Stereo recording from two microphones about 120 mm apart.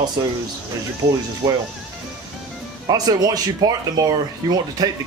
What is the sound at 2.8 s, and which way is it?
Speech, 35° right (ahead or behind).